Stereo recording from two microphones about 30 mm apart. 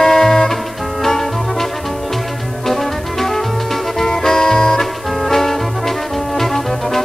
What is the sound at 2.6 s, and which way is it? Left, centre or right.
Music, centre.